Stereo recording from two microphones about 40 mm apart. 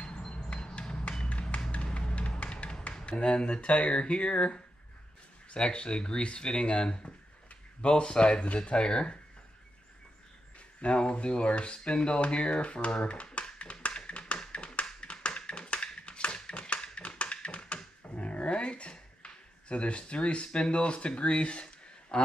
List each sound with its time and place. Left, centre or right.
0.0 s a sound: left
1.5 s music: left
3.1 s speech: left
10.8 s a sound: left
18.1 s speech: left
22.1 s a man's voice: centre